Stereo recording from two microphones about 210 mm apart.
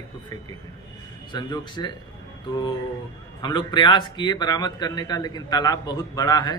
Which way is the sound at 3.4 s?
20° left (ahead or behind).